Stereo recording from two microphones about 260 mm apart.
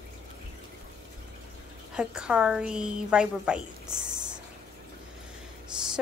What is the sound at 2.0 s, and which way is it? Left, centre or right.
Speech, centre.